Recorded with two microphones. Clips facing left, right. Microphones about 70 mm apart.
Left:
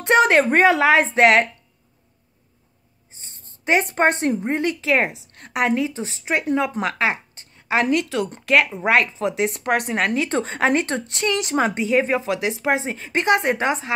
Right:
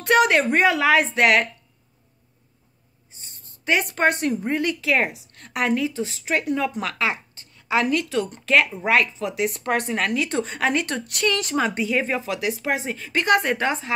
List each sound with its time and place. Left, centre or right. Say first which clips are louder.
0.0 s speech: left 2 dB; left
3.6 s a woman's voice: left 2 dB; left
11.2 s a woman's voice: even; centre
11.5 s a woman's voice: left 3 dB; left